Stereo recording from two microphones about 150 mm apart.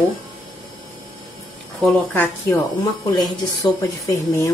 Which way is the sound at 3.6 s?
20° left (ahead or behind).